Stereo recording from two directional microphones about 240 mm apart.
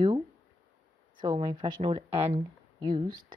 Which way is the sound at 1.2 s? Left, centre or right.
Centre.